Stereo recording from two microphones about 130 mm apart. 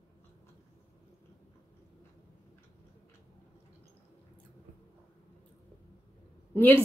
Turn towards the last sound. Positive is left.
turn(degrees=15)  # may be behind; listen again after turning